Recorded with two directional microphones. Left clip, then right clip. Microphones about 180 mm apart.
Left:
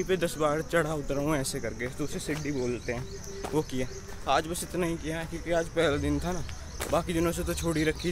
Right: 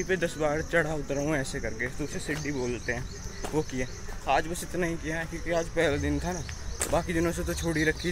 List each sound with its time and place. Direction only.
0.0 s speech: 20° left (ahead or behind)